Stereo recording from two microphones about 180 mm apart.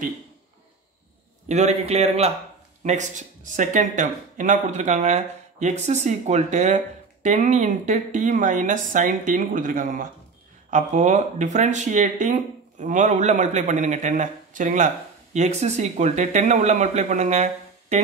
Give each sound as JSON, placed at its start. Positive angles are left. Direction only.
{"t": 1.5, "sound": "speech", "side_deg": -40}